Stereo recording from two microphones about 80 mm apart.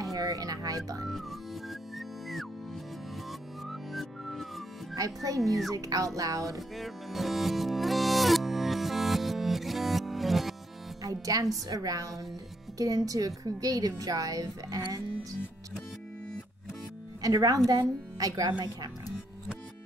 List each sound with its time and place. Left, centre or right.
0.0 s music: right
1.0 s music: centre
3.6 s music: centre
4.9 s a child's voice: right
6.8 s music: centre
11.0 s a woman's voice: right
17.2 s a woman's voice: right